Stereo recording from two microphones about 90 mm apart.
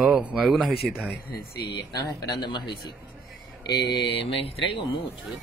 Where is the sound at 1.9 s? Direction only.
55° left (ahead or behind).